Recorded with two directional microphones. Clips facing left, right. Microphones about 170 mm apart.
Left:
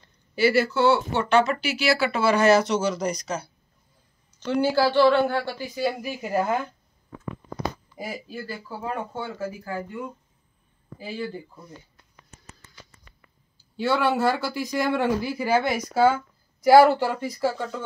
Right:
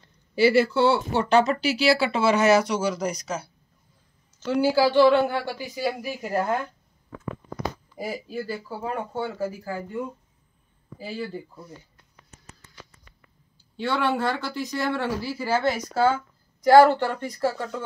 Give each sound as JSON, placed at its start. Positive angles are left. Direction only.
{"t": 0.4, "sound": "a woman's voice", "side_deg": -30}
{"t": 7.9, "sound": "speech", "side_deg": 0}
{"t": 11.0, "sound": "speech", "side_deg": 0}
{"t": 13.6, "sound": "speech", "side_deg": 5}